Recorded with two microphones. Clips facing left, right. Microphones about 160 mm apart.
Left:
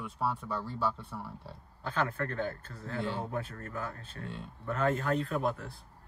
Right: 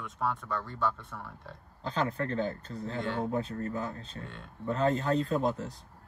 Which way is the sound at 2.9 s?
10° left (ahead or behind).